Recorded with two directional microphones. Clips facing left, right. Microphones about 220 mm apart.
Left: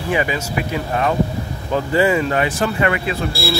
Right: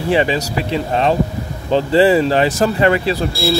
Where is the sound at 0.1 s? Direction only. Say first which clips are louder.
Right 4 dB; 30° right (ahead or behind).